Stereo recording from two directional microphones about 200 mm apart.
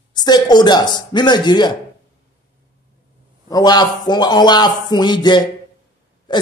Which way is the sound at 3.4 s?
20° left (ahead or behind).